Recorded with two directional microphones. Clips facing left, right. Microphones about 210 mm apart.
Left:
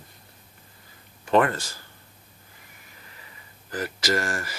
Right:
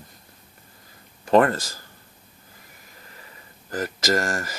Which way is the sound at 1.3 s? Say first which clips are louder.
Right 3 dB; 40° right (ahead or behind).